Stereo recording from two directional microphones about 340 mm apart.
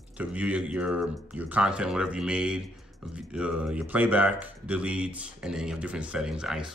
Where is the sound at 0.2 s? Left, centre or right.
Centre.